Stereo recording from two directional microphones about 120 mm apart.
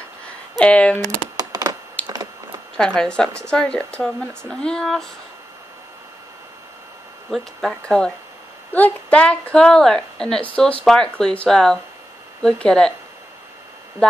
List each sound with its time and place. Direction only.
0.6 s speech: 10° left (ahead or behind)
1.0 s a sound: 30° right (ahead or behind)
2.0 s a sound: 10° left (ahead or behind)
2.8 s speech: 5° left (ahead or behind)
7.2 s speech: centre (ahead or behind)
7.8 s speech: 10° left (ahead or behind)